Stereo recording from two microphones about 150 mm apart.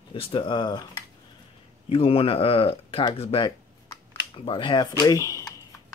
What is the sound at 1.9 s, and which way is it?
Speech, 40° left (ahead or behind).